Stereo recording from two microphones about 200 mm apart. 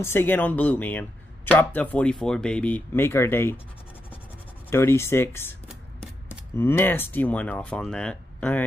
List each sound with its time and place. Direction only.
0.0 s speech: 10° left (ahead or behind)
4.6 s speech: 10° left (ahead or behind)